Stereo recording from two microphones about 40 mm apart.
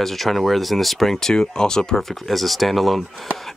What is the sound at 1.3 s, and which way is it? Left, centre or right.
Speech, centre.